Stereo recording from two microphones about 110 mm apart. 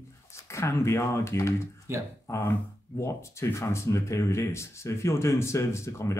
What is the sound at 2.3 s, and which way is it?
Speech, 25° left (ahead or behind).